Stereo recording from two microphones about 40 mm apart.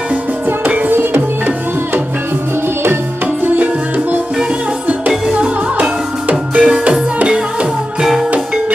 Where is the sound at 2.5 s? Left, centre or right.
Right.